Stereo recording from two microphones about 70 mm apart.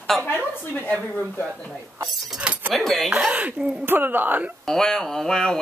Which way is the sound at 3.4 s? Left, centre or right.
Centre.